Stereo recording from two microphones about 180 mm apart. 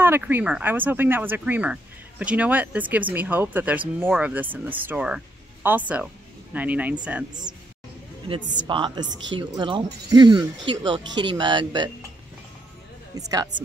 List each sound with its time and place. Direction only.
0.0 s speech: 10° right (ahead or behind)
8.4 s a woman's voice: 45° right (ahead or behind)
8.6 s speech: 25° right (ahead or behind)
13.1 s speech: 20° right (ahead or behind)